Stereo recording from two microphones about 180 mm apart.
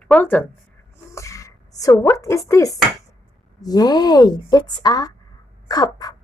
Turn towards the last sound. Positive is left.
turn(degrees=20)  # may be behind; listen again after turning